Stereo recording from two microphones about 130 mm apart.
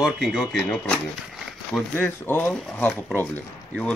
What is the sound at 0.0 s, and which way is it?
Speech, 5° left (ahead or behind).